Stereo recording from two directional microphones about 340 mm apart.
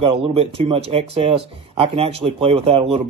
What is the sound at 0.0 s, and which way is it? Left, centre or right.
Speech, centre.